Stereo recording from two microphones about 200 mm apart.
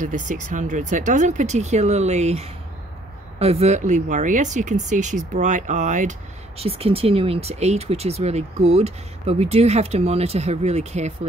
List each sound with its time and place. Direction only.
0.0 s speech: 40° right (ahead or behind)